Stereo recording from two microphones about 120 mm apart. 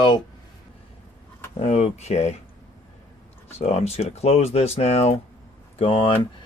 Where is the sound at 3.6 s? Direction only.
60° left (ahead or behind).